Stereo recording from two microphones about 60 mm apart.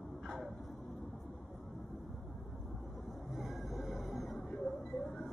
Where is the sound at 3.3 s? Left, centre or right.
Centre.